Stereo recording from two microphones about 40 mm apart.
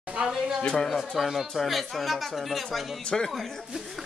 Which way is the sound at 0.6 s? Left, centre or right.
Left.